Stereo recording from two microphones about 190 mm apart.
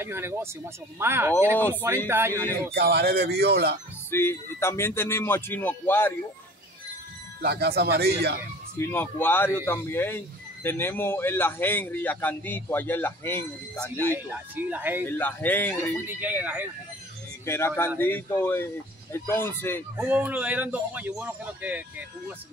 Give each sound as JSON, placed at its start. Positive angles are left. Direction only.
{"t": 0.0, "sound": "speech", "side_deg": -10}
{"t": 2.7, "sound": "speech", "side_deg": -55}
{"t": 4.1, "sound": "a man's voice", "side_deg": 15}
{"t": 7.4, "sound": "speech", "side_deg": -55}
{"t": 8.7, "sound": "a man's voice", "side_deg": 10}
{"t": 14.0, "sound": "speech", "side_deg": -10}
{"t": 15.0, "sound": "a man's voice", "side_deg": 10}
{"t": 16.1, "sound": "speech", "side_deg": -10}
{"t": 17.5, "sound": "a man's voice", "side_deg": 15}
{"t": 20.0, "sound": "speech", "side_deg": -10}